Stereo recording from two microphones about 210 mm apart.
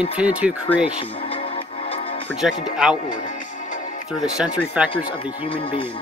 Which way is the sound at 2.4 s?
5° right (ahead or behind).